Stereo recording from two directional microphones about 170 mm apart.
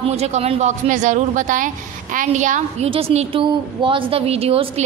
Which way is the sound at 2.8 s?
35° right (ahead or behind).